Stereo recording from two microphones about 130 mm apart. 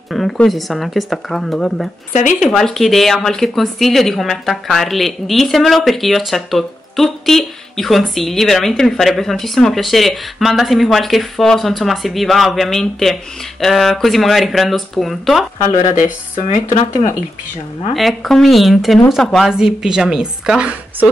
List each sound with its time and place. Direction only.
0.1 s a woman's voice: centre (ahead or behind)
16.0 s speech: 75° left (ahead or behind)
17.9 s a woman's voice: centre (ahead or behind)